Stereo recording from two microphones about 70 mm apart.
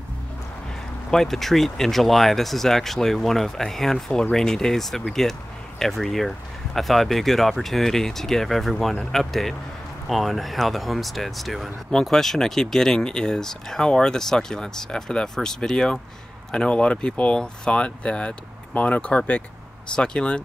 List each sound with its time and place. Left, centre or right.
1.1 s speech: centre